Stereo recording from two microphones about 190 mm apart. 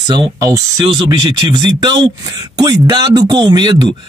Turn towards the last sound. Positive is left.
turn(degrees=-25)  # may be behind; listen again after turning